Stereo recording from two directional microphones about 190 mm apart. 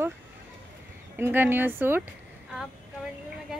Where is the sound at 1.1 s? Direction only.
10° right (ahead or behind).